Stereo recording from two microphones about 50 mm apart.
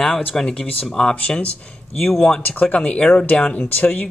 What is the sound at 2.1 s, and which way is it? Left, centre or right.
Speech, centre.